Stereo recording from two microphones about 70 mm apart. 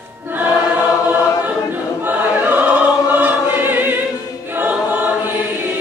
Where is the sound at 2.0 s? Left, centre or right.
Right.